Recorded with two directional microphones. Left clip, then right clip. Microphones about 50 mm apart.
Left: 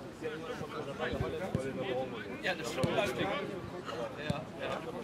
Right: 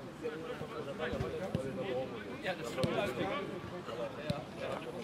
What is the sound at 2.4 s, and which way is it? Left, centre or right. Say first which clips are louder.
Speech: left 4 dB; left.